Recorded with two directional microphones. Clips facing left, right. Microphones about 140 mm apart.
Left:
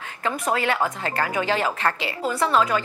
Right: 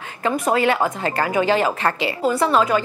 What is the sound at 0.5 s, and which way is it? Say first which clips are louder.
A woman's voice: right 4 dB; 15° right (ahead or behind).